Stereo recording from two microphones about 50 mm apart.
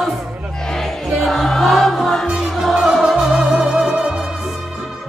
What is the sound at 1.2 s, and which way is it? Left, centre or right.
Music, centre.